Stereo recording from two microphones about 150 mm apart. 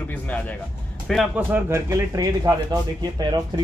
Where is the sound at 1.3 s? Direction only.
15° right (ahead or behind).